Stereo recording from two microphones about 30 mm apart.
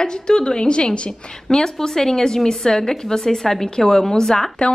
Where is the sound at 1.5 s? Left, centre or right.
Centre.